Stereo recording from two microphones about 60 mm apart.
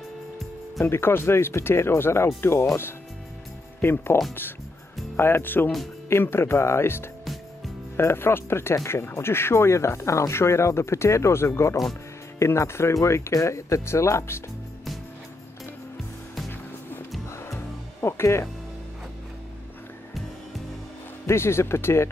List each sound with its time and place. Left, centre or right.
0.8 s speech: left
3.8 s speech: left
17.6 s music: left
21.3 s speech: left